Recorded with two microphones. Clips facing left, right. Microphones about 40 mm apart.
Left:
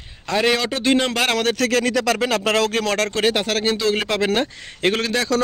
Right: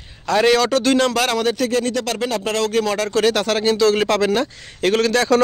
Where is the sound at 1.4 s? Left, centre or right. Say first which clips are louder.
Even; left.